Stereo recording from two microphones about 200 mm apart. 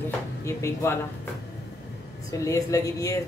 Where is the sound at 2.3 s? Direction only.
15° left (ahead or behind).